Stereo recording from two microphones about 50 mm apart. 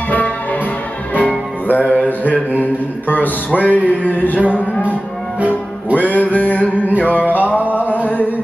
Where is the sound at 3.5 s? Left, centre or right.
Left.